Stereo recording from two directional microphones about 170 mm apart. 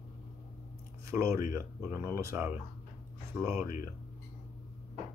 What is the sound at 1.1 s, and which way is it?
Speech, 15° right (ahead or behind).